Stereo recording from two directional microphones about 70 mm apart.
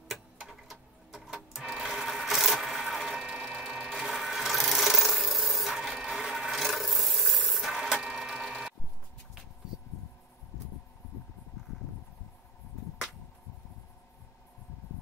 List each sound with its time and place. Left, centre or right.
0.1 s sewing machine: centre
7.4 s printer: centre